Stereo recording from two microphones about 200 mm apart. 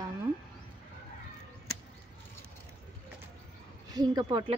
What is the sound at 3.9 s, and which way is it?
Speech, 20° right (ahead or behind).